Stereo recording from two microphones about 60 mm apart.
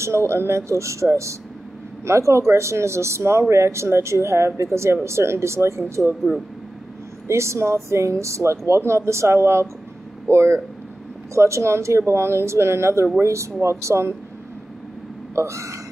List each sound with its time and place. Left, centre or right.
0.0 s speech: right
7.2 s speech: right
11.3 s speech: right
15.3 s speech: right